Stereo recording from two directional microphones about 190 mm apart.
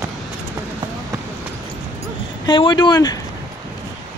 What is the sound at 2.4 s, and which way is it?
Speech, 25° left (ahead or behind).